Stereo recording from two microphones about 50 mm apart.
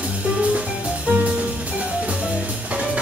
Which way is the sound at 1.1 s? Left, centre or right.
Right.